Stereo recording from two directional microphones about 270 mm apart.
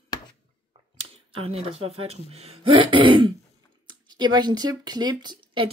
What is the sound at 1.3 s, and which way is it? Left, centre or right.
Speech, right.